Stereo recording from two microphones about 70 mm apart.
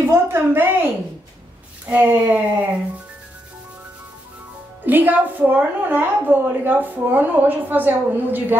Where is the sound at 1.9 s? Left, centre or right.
Right.